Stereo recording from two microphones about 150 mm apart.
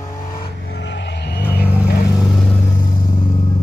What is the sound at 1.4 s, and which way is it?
Vehicle, 90° left.